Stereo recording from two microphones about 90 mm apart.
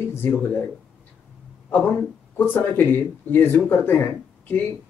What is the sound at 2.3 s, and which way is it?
Speech, 25° left (ahead or behind).